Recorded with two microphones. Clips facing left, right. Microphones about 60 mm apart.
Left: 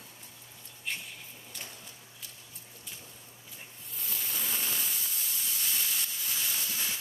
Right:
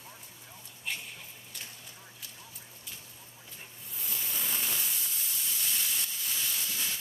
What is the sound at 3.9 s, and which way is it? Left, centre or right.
Hiss, centre.